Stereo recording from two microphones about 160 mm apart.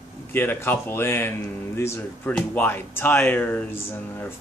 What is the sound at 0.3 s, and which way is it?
Speech, 15° left (ahead or behind).